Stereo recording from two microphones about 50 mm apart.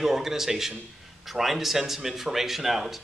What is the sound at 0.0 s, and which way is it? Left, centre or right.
A man's voice, centre.